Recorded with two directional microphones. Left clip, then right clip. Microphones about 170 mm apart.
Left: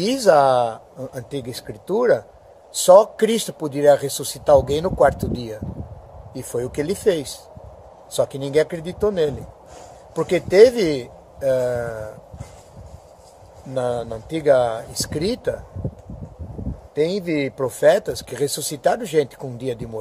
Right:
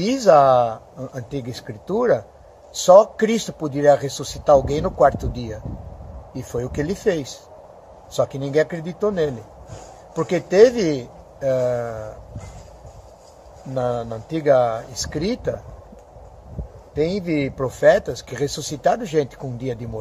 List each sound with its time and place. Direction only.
0.0 s speech: 20° left (ahead or behind)
13.7 s speech: 15° left (ahead or behind)
16.9 s speech: 10° left (ahead or behind)